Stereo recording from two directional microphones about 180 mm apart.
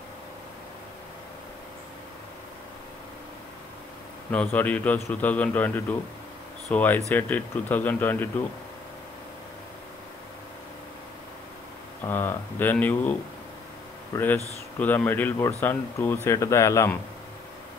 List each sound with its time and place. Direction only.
4.3 s a man's voice: 10° left (ahead or behind)
12.0 s a man's voice: 10° left (ahead or behind)
14.1 s a man's voice: 10° left (ahead or behind)